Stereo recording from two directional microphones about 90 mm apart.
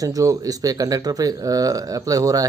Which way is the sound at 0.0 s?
40° right (ahead or behind).